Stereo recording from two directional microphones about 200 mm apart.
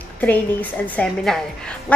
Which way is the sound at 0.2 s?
10° left (ahead or behind).